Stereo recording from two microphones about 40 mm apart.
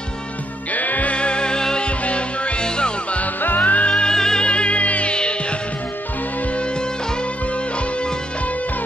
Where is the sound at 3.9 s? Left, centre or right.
Centre.